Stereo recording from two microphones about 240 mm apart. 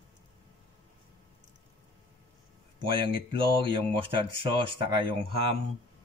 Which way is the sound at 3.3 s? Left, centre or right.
Right.